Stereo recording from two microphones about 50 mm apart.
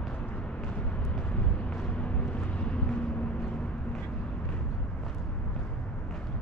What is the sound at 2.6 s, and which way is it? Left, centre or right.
Vehicle, left.